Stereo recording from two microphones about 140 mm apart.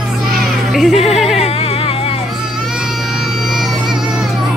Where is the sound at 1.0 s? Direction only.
Centre (ahead or behind).